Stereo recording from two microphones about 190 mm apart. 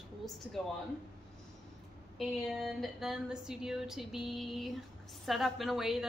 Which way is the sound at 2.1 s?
Centre (ahead or behind).